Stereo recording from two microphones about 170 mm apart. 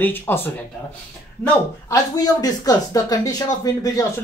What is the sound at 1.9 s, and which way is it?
Speech, 20° left (ahead or behind).